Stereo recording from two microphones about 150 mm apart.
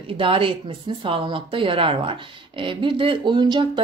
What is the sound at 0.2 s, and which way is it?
Speech, 35° right (ahead or behind).